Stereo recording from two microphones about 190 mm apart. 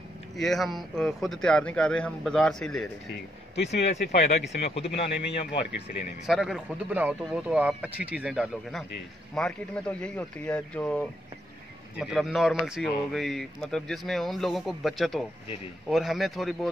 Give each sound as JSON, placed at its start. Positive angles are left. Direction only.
{"t": 0.4, "sound": "speech", "side_deg": 0}
{"t": 3.5, "sound": "speech", "side_deg": 35}
{"t": 6.2, "sound": "speech", "side_deg": 0}